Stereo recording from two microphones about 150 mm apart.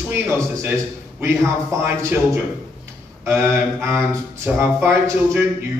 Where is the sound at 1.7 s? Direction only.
20° right (ahead or behind).